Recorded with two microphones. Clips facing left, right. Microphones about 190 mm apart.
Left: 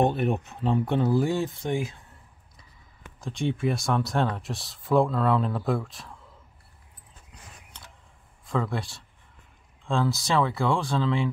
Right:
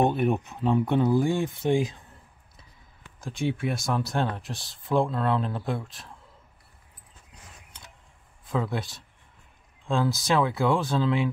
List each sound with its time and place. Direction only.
0.6 s speech: 15° right (ahead or behind)
3.2 s speech: 5° right (ahead or behind)
8.5 s speech: centre (ahead or behind)
9.8 s speech: centre (ahead or behind)